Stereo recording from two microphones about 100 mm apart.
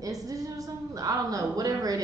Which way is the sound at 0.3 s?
35° right (ahead or behind).